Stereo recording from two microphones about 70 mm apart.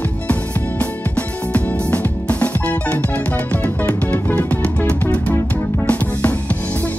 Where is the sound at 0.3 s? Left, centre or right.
Left.